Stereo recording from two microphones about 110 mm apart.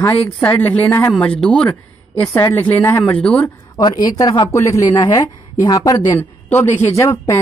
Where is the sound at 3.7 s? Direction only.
35° left (ahead or behind).